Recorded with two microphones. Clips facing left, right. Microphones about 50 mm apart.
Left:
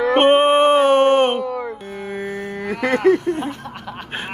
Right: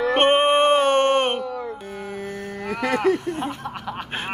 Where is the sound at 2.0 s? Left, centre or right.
Left.